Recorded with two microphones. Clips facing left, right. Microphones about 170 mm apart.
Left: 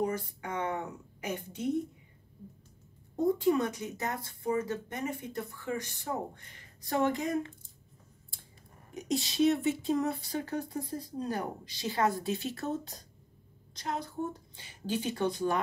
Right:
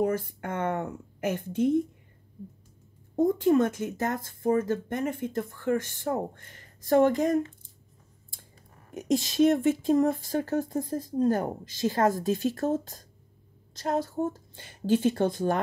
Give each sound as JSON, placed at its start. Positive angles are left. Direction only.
{"t": 0.0, "sound": "a sound", "side_deg": -55}
{"t": 3.2, "sound": "speech", "side_deg": -50}
{"t": 9.1, "sound": "speech", "side_deg": -45}